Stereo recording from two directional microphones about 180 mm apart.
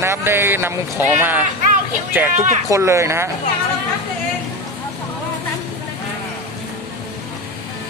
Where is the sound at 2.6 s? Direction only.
15° right (ahead or behind).